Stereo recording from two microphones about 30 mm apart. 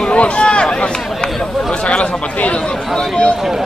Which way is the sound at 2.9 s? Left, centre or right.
Left.